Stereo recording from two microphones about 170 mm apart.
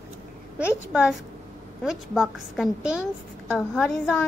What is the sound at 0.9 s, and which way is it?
A woman's voice, 5° right (ahead or behind).